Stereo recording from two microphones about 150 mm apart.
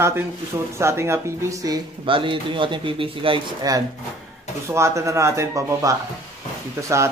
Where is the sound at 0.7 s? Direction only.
20° right (ahead or behind).